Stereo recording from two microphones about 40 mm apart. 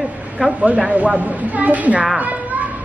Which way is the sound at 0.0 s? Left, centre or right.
Right.